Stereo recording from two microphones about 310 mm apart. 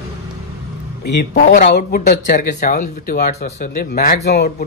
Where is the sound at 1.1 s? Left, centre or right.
Left.